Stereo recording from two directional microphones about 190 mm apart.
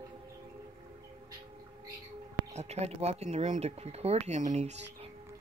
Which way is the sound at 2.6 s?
35° right (ahead or behind).